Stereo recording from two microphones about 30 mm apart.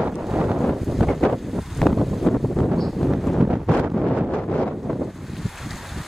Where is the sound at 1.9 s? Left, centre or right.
Centre.